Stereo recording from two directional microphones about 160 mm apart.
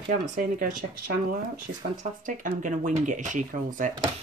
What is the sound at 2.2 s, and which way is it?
Speech, 55° right (ahead or behind).